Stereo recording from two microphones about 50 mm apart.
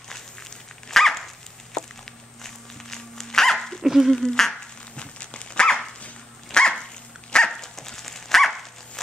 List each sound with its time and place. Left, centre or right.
0.8 s dog: centre
2.4 s dog: centre
3.8 s a sound: centre
4.1 s speech: centre
4.9 s dog: left; by 9.0 s centre